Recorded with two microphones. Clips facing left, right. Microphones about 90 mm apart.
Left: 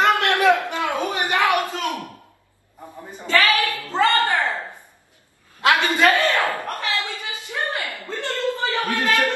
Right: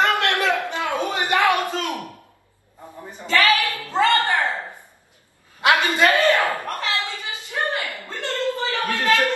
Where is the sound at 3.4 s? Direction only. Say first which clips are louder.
Right 2 dB; 20° right (ahead or behind).